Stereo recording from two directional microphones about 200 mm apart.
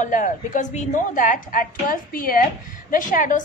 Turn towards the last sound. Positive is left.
turn(degrees=40)  # may be behind; listen again after turning